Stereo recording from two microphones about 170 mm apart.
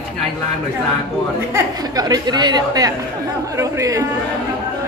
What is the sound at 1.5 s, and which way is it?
Speech, 20° right (ahead or behind).